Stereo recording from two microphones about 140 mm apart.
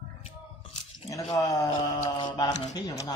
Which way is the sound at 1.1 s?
25° left (ahead or behind).